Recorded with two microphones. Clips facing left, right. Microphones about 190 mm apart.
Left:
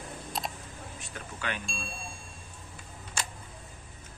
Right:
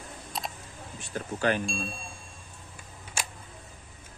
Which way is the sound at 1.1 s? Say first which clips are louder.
Right 10 dB; 40° right (ahead or behind).